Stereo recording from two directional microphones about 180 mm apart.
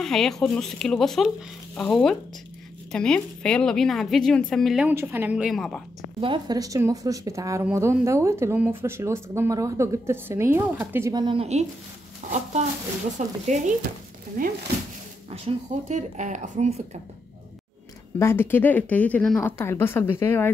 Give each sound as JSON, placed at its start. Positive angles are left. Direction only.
{"t": 0.0, "sound": "a woman's voice", "side_deg": 0}
{"t": 6.2, "sound": "speech", "side_deg": -25}
{"t": 14.4, "sound": "speech", "side_deg": -50}
{"t": 15.3, "sound": "speech", "side_deg": -40}
{"t": 18.2, "sound": "speech", "side_deg": 10}